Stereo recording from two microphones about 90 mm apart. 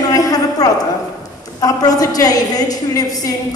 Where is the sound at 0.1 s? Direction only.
45° left (ahead or behind).